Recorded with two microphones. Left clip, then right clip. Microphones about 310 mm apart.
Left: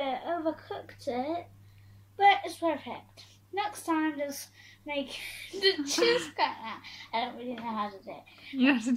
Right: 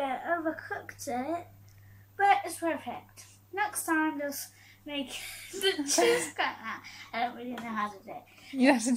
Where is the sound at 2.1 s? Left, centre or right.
Centre.